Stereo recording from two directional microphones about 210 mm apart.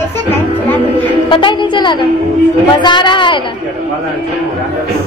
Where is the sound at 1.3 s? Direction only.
20° left (ahead or behind).